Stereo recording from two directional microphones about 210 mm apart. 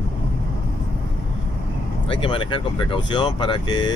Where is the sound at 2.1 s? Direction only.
25° left (ahead or behind).